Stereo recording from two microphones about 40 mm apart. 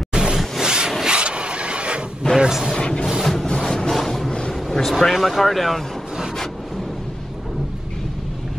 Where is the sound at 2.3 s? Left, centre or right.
Centre.